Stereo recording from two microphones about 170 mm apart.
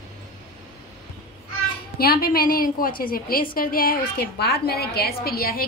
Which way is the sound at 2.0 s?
65° left (ahead or behind).